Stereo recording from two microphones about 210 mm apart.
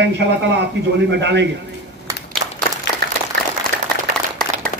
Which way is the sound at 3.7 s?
50° right (ahead or behind).